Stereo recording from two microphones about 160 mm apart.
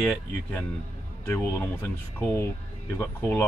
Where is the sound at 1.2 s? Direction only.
15° left (ahead or behind).